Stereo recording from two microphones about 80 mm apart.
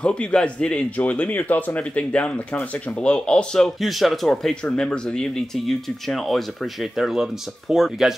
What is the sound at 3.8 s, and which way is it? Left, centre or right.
Speech, centre.